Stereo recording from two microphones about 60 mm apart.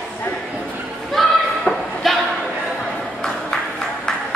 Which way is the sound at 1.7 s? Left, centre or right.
Centre.